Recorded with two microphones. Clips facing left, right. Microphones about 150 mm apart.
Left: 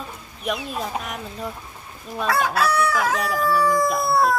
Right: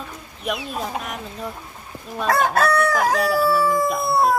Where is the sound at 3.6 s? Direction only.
25° right (ahead or behind).